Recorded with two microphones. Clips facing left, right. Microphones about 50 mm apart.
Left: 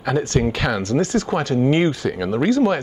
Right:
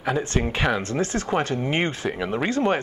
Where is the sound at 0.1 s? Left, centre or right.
Right.